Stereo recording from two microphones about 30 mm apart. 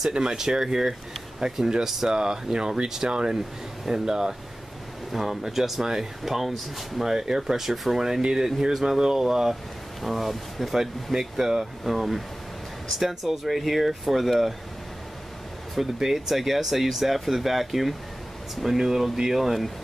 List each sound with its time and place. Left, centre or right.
0.1 s speech: right
5.1 s speech: centre
7.1 s speech: centre
8.3 s speech: centre
10.0 s speech: centre
15.7 s speech: centre